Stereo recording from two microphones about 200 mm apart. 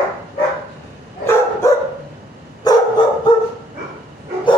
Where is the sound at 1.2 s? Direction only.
15° left (ahead or behind).